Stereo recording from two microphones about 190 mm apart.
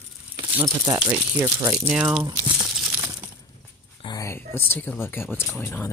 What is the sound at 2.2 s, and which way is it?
Crumpling, 10° right (ahead or behind).